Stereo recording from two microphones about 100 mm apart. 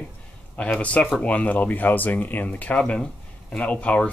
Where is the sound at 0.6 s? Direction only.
15° left (ahead or behind).